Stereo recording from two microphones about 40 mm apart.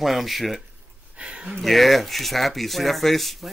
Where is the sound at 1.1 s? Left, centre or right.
Right.